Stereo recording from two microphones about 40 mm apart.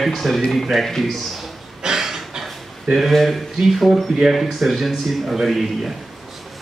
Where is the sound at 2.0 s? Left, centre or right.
Centre.